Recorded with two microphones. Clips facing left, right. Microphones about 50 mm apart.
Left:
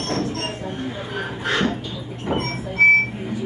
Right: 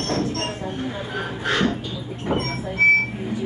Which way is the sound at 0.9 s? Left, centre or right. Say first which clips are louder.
Even; centre.